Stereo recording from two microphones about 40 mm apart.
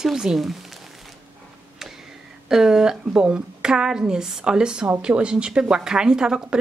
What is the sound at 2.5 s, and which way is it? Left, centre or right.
A woman's voice, centre.